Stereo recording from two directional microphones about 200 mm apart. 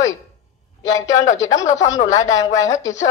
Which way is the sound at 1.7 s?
35° left (ahead or behind).